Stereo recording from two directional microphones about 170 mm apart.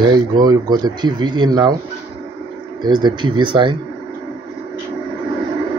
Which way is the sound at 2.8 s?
25° right (ahead or behind).